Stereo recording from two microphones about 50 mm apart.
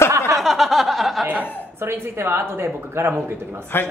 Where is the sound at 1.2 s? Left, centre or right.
Right.